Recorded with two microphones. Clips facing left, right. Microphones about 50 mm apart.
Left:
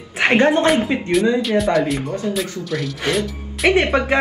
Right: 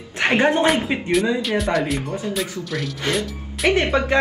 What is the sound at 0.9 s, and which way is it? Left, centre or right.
Speech, centre.